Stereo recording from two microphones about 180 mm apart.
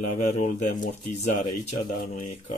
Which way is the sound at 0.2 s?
40° left (ahead or behind).